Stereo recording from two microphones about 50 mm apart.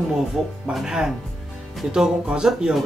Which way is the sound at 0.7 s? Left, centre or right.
Centre.